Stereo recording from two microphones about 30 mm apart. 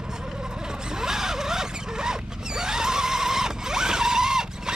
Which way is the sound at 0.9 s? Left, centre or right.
Centre.